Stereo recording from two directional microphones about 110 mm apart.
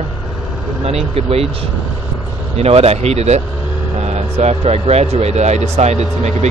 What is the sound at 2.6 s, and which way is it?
Speech, 70° right (ahead or behind).